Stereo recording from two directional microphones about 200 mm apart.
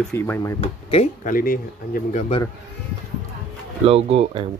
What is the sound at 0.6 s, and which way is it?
Speech, 30° left (ahead or behind).